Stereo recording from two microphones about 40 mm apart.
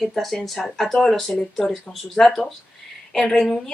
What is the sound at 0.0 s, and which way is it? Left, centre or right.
Speech, centre.